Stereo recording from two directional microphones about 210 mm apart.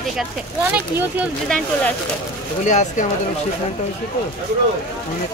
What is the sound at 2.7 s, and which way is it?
Speech, 35° left (ahead or behind).